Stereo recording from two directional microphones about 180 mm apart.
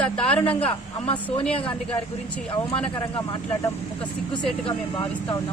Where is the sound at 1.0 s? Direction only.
30° left (ahead or behind).